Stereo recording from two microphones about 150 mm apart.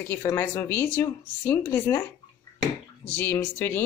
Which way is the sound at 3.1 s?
15° left (ahead or behind).